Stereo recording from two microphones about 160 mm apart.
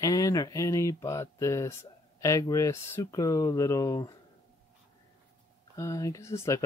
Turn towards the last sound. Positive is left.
turn(degrees=15)  # may be behind; listen again after turning